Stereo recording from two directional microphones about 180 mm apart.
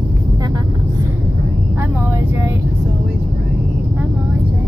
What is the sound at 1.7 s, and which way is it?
Vehicle, 10° right (ahead or behind).